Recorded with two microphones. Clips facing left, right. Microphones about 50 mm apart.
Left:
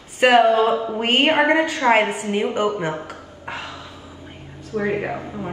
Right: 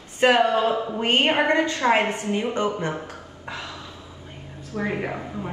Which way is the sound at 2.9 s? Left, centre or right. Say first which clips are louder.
Left 3 dB; left.